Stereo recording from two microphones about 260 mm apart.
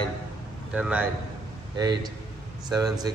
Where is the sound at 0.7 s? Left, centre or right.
Centre.